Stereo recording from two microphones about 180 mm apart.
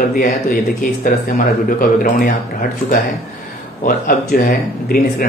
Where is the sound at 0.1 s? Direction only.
50° left (ahead or behind).